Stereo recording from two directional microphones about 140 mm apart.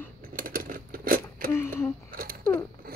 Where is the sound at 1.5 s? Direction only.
15° left (ahead or behind).